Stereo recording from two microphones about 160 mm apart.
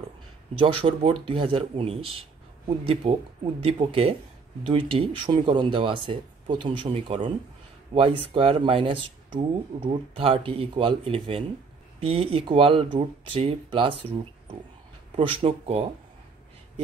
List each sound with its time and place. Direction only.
0.6 s speech: 35° right (ahead or behind)
15.1 s speech: 35° right (ahead or behind)